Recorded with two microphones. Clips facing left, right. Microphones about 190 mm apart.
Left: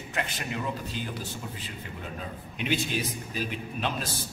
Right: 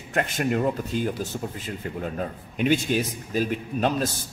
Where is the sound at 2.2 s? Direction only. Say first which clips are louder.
Right 10 dB; 45° right (ahead or behind).